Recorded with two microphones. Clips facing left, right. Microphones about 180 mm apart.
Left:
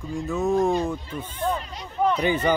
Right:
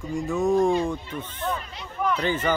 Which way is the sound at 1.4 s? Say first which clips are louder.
Left 5 dB; 35° left (ahead or behind).